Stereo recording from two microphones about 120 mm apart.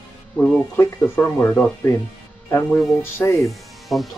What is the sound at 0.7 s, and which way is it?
Speech, 20° left (ahead or behind).